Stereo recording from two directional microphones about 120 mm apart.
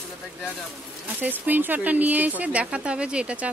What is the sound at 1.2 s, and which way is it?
Speech, 15° right (ahead or behind).